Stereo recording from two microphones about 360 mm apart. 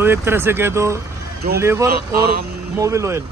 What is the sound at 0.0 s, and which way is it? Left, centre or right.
Speech, centre.